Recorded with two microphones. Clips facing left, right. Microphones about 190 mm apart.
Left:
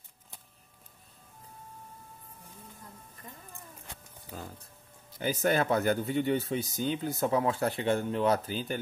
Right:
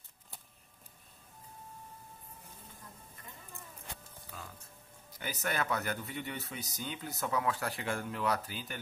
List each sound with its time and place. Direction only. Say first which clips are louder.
4.3 s music: left 7 dB; 35° left (ahead or behind)
5.1 s speech: left 9 dB; 25° left (ahead or behind)